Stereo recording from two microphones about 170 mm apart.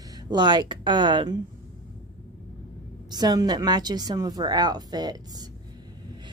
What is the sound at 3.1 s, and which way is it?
A woman's voice, 25° right (ahead or behind).